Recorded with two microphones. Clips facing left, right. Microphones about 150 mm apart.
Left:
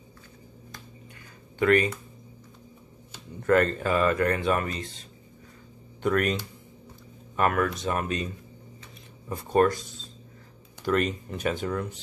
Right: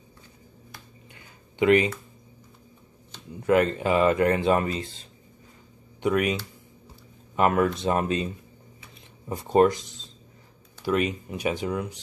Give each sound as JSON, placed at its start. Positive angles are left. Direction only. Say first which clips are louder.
{"t": 1.6, "sound": "speech", "louder": "right 2 dB", "side_deg": -20}
{"t": 3.3, "sound": "speech", "louder": "right 1 dB", "side_deg": -10}
{"t": 6.0, "sound": "speech", "louder": "right 1 dB", "side_deg": -5}
{"t": 7.3, "sound": "speech", "louder": "right 3 dB", "side_deg": -25}
{"t": 9.3, "sound": "speech", "louder": "right 3 dB", "side_deg": -20}
{"t": 10.8, "sound": "speech", "louder": "right 1 dB", "side_deg": -5}